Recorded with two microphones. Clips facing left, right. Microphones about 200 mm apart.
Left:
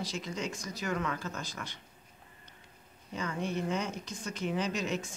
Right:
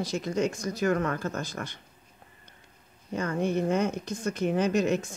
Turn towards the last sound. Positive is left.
turn(degrees=-50)  # may be behind; listen again after turning